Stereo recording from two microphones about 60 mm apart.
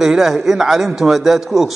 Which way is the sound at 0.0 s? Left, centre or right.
Centre.